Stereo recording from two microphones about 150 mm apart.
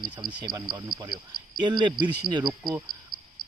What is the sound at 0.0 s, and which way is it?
Speech, 25° right (ahead or behind).